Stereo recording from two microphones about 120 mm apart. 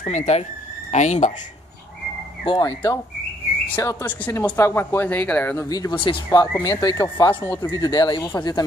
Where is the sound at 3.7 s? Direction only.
15° left (ahead or behind).